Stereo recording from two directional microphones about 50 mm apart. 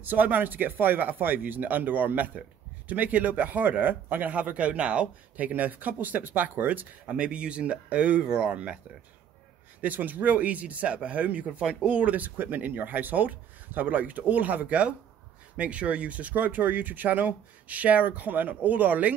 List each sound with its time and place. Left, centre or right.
0.0 s speech: right
5.5 s speech: right
7.1 s speech: right
9.8 s speech: right